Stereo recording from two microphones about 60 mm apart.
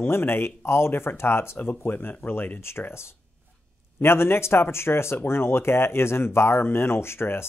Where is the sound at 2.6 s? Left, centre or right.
Left.